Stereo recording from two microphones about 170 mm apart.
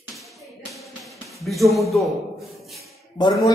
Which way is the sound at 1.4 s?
Centre (ahead or behind).